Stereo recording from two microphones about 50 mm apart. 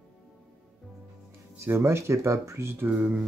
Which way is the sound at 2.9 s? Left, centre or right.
Right.